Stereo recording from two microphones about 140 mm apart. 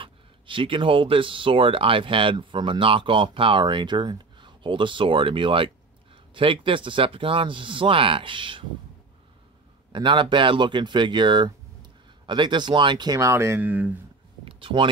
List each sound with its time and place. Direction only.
0.0 s speech: 35° right (ahead or behind)
9.9 s speech: 35° right (ahead or behind); by 13.9 s 10° right (ahead or behind)
14.4 s a sound: 40° right (ahead or behind)